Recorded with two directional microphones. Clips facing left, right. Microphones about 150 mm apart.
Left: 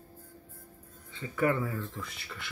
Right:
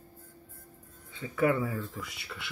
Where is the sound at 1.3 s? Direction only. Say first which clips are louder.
Right 1 dB; 5° right (ahead or behind).